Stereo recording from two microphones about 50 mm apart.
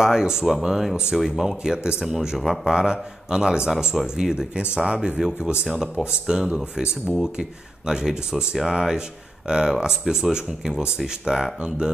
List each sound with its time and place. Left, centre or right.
0.0 s speech: centre
1.6 s speech: centre
2.7 s speech: centre